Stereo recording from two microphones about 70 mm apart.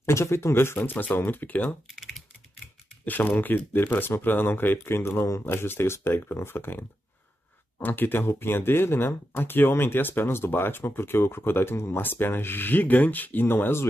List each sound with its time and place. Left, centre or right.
0.0 s speech: left
3.1 s speech: left